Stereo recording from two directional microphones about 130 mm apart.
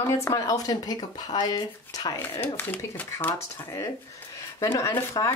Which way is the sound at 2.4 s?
15° left (ahead or behind).